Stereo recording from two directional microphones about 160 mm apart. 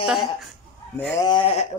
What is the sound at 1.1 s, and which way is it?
Speech, 25° left (ahead or behind).